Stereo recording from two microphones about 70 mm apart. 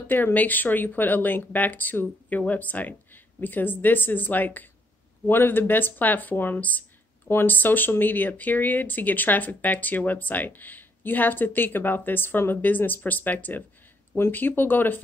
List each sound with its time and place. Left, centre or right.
0.1 s speech: left